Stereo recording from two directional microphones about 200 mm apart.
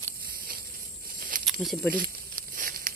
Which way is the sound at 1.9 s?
45° right (ahead or behind).